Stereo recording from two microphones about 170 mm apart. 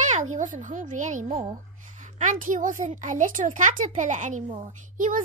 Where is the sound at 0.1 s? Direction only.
45° right (ahead or behind).